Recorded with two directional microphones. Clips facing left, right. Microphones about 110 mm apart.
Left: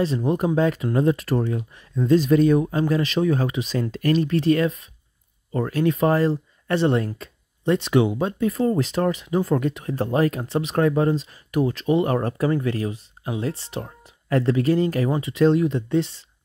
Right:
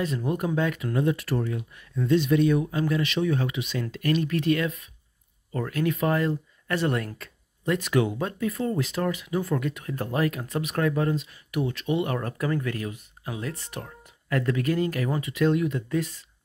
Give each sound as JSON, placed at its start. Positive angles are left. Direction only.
{"t": 0.0, "sound": "speech", "side_deg": 25}